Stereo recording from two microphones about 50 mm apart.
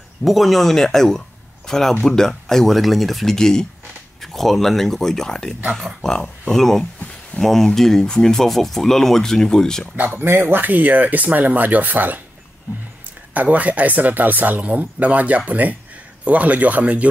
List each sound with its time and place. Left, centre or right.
0.2 s speech: centre
9.9 s speech: right
10.2 s speech: right
13.3 s speech: right